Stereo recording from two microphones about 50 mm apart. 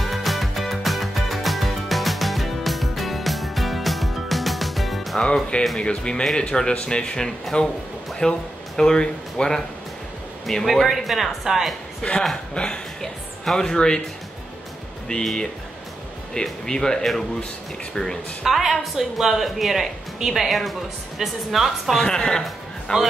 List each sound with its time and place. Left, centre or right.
0.0 s music: centre
5.2 s speech: centre
10.4 s speech: centre
12.0 s speech: left
15.1 s speech: left
16.6 s speech: centre
18.4 s speech: centre
21.9 s speech: centre